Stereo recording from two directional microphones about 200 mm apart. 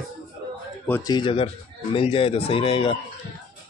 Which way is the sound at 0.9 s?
20° left (ahead or behind).